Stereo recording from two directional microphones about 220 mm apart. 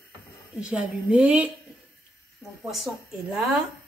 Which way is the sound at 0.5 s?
5° right (ahead or behind).